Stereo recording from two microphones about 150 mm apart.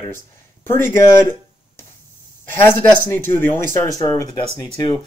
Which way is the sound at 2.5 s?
15° left (ahead or behind).